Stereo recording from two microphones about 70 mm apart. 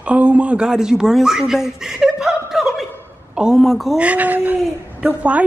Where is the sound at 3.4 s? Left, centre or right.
Centre.